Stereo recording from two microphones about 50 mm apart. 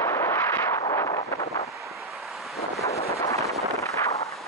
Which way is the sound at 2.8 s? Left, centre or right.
Left.